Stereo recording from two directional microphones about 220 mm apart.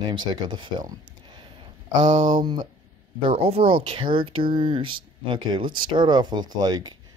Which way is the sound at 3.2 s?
25° right (ahead or behind).